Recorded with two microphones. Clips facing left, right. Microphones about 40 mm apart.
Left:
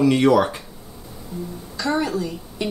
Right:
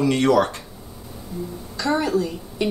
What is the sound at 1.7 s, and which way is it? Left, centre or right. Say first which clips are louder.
Speech: right 1 dB; centre.